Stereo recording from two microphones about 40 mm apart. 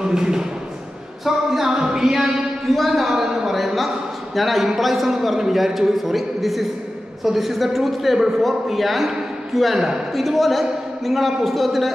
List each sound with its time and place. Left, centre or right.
0.0 s speech: centre
1.2 s a sound: centre
3.0 s a man's voice: centre